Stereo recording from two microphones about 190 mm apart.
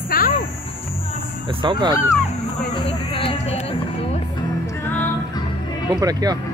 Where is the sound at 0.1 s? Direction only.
50° left (ahead or behind).